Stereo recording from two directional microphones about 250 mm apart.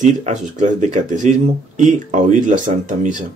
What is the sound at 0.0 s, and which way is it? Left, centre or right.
Speech, right.